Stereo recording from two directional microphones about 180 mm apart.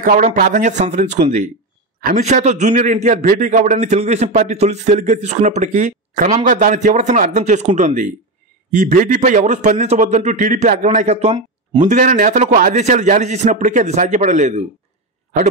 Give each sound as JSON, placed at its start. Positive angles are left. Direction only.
{"t": 0.0, "sound": "a man's voice", "side_deg": -45}